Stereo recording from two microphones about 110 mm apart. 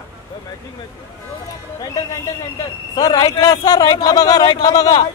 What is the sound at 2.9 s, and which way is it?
A man's voice, 35° left (ahead or behind).